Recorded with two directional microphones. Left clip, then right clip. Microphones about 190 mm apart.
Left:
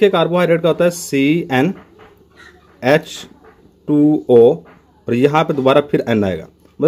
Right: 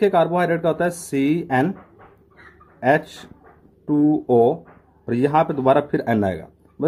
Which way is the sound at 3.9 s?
10° left (ahead or behind).